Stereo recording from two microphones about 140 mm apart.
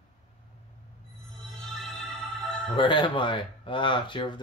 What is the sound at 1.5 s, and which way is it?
Music, centre (ahead or behind).